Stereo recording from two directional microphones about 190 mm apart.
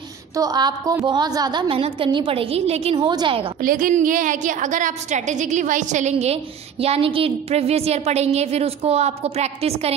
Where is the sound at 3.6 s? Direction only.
45° right (ahead or behind).